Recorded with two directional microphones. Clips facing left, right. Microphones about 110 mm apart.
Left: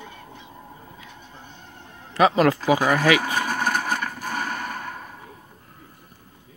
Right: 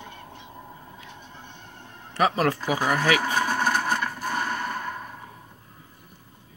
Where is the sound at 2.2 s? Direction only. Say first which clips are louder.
Left 5 dB; 90° left.